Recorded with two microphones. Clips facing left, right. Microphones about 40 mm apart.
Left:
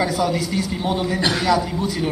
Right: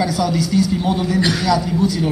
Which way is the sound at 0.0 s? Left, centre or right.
Left.